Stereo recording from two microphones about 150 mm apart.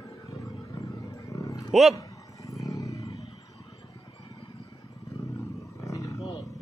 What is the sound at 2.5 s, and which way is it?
Roar, 20° left (ahead or behind).